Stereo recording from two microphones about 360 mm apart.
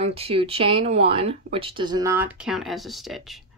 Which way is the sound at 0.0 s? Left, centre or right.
Centre.